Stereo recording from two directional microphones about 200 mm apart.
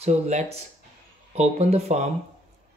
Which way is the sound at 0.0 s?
35° right (ahead or behind).